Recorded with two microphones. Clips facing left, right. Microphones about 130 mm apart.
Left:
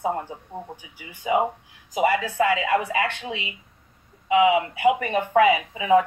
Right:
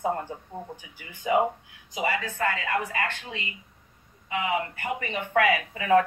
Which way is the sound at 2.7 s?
90° left.